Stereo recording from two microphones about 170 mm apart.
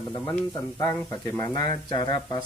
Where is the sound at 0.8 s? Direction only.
15° left (ahead or behind).